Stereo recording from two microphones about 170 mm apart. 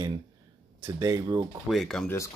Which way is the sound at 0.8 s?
20° right (ahead or behind).